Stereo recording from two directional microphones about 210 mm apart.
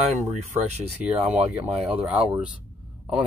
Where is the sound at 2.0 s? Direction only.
5° right (ahead or behind).